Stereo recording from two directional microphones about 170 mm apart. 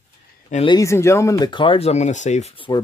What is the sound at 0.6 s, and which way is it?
Speech, 20° left (ahead or behind).